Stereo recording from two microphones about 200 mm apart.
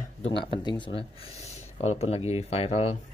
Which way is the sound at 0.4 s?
25° left (ahead or behind).